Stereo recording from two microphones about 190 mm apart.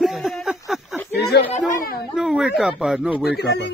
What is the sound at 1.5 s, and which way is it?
Speech, 45° left (ahead or behind).